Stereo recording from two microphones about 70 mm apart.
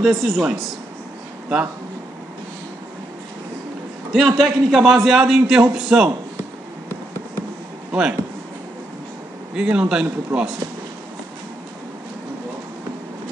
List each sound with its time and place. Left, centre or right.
0.0 s a man's voice: centre
4.1 s a man's voice: centre
7.9 s speech: centre
9.6 s a man's voice: centre